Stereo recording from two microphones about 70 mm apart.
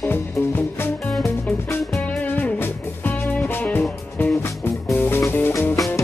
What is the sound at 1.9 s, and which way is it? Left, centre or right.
Music, left.